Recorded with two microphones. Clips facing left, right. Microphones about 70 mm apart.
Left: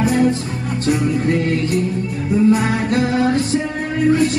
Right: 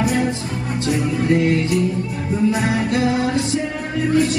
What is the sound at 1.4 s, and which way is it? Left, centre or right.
Music, left.